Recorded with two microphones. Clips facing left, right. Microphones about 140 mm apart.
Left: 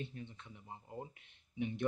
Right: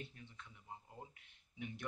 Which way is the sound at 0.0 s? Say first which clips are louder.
Left 7 dB; 25° left (ahead or behind).